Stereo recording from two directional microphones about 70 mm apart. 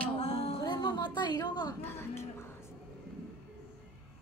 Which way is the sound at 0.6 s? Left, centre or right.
Left.